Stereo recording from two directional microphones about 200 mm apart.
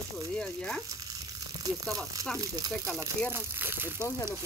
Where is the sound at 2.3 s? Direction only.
15° right (ahead or behind).